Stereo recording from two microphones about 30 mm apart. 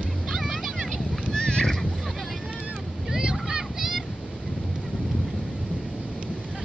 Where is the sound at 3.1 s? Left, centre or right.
Right.